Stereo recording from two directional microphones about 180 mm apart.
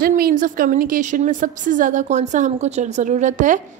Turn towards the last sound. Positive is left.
turn(degrees=-45)  # may be behind; listen again after turning